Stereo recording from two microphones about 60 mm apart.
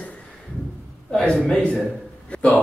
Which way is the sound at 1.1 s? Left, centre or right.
Centre.